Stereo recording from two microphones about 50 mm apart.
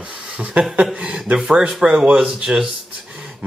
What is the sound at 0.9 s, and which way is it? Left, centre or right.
Speech, centre.